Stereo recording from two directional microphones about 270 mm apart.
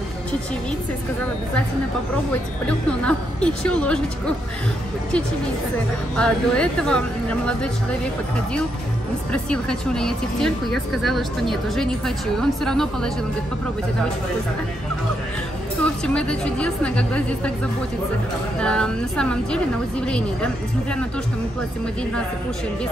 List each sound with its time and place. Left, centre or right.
2.6 s speech: centre
6.1 s speech: centre
9.3 s speech: centre
15.8 s speech: centre
18.6 s speech: centre